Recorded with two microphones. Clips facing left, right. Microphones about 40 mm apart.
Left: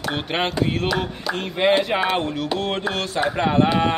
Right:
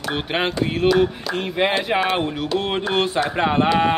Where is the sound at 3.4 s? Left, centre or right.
Right.